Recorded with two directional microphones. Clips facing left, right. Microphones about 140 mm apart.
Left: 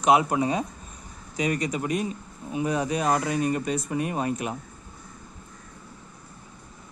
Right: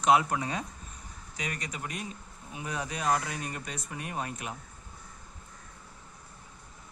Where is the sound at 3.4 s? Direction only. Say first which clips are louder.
Left 13 dB; 15° left (ahead or behind).